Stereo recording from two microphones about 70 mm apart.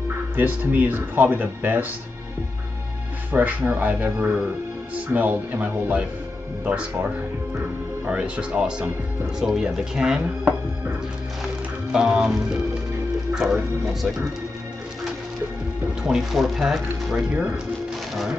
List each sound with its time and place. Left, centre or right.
0.4 s speech: right
3.3 s speech: right; by 10.2 s centre
11.9 s speech: centre
15.9 s speech: centre